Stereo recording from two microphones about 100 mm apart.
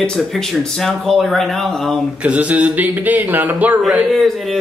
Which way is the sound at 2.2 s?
15° right (ahead or behind).